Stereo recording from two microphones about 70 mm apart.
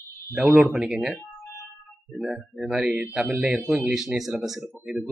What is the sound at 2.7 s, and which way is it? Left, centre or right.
Speech, centre.